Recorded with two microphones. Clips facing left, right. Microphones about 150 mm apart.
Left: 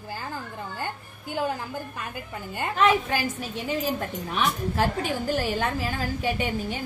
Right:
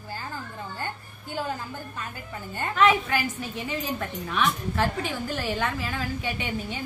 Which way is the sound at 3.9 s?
25° left (ahead or behind).